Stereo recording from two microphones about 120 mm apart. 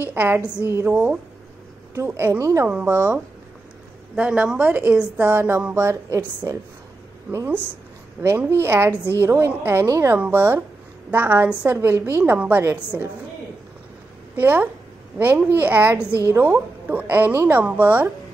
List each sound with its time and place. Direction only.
0.0 s a woman's voice: 20° right (ahead or behind)
4.1 s a woman's voice: 10° right (ahead or behind)
14.3 s a woman's voice: 15° right (ahead or behind)